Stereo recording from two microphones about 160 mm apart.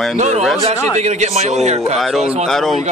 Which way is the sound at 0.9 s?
45° right (ahead or behind).